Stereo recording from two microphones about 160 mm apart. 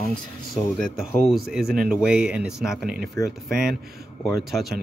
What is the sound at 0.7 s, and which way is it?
Speech, 5° left (ahead or behind).